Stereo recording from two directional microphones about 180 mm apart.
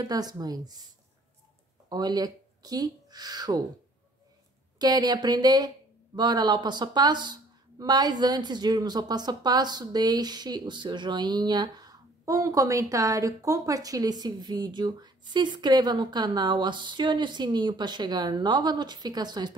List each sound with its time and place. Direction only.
0.0 s speech: 20° right (ahead or behind)
4.7 s speech: 20° right (ahead or behind)